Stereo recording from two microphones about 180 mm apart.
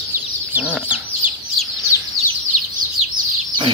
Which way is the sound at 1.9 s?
15° right (ahead or behind).